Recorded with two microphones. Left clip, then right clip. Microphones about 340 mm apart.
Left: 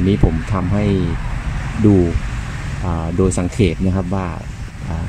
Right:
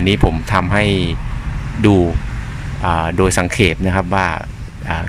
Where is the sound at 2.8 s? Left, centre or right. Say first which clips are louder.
Right 5 dB; right.